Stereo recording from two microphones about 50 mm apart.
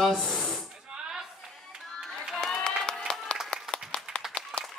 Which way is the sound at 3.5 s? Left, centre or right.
Centre.